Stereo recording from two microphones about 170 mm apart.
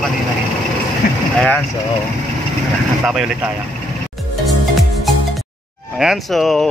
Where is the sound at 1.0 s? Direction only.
60° left (ahead or behind).